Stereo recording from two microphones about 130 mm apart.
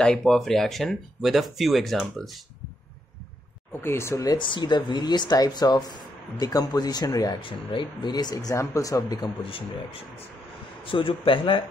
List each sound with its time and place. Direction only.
0.0 s speech: 5° left (ahead or behind)
3.8 s speech: 20° left (ahead or behind)
10.8 s speech: 40° left (ahead or behind)